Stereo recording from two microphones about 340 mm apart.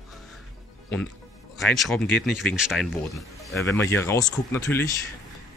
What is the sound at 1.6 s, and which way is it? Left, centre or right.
Speech, centre.